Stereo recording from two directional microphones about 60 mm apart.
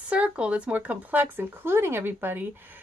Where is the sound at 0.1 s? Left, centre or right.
Centre.